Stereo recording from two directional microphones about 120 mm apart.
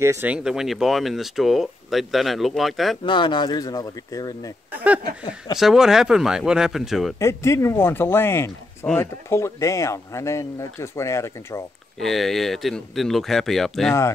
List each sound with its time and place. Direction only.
0.0 s speech: 25° right (ahead or behind)
0.3 s speech: 5° right (ahead or behind)
3.0 s speech: 40° left (ahead or behind)
4.7 s a sound: 10° right (ahead or behind)
5.6 s speech: 5° right (ahead or behind)
7.2 s speech: 25° left (ahead or behind)
12.0 s speech: centre (ahead or behind)